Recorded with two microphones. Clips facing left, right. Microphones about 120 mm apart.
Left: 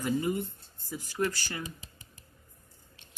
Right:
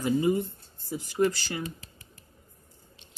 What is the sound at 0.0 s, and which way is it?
Speech, 15° right (ahead or behind).